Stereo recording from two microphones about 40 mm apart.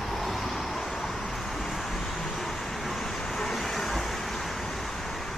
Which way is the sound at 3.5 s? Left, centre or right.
Centre.